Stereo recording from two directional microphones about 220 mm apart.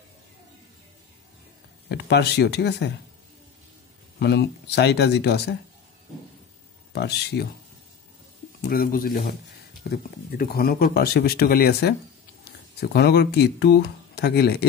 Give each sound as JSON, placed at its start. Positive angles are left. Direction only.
{"t": 1.9, "sound": "speech", "side_deg": 50}
{"t": 4.2, "sound": "speech", "side_deg": 50}
{"t": 6.9, "sound": "speech", "side_deg": 50}
{"t": 8.5, "sound": "speech", "side_deg": 40}